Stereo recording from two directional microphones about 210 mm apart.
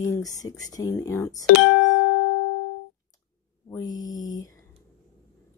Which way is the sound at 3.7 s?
15° left (ahead or behind).